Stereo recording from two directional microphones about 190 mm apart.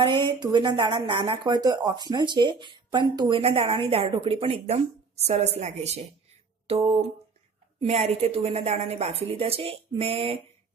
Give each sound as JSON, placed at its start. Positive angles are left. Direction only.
{"t": 0.0, "sound": "a woman's voice", "side_deg": -25}